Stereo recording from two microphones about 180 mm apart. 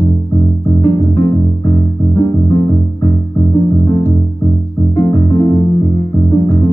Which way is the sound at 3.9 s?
20° left (ahead or behind).